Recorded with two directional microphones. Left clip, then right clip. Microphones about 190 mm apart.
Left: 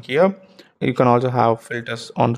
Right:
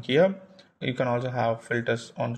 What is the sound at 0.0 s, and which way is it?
Speech, 25° left (ahead or behind).